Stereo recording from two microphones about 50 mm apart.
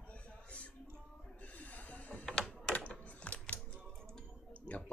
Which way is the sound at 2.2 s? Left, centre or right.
Centre.